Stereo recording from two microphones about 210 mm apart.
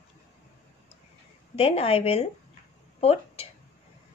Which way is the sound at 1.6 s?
30° left (ahead or behind).